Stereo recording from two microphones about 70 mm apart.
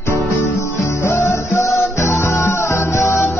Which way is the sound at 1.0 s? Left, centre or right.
Left.